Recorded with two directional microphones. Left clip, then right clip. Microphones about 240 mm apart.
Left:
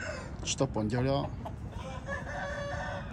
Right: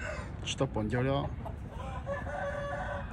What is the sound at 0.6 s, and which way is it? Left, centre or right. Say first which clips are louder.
Speech: left 1 dB; centre.